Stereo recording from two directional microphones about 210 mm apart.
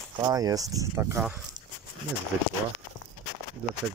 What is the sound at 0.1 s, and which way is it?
Speech, 15° right (ahead or behind).